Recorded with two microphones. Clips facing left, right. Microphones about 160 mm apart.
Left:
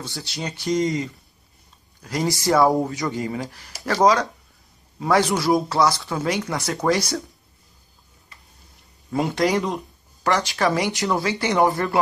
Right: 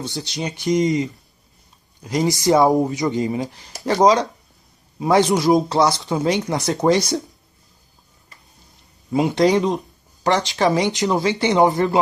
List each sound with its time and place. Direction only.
0.0 s speech: 20° right (ahead or behind)
9.1 s speech: 15° right (ahead or behind)